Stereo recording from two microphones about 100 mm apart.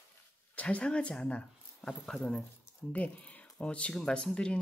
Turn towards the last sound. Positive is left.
turn(degrees=10)  # may be behind; listen again after turning